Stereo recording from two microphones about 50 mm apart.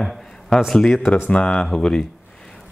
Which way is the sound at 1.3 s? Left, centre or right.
Centre.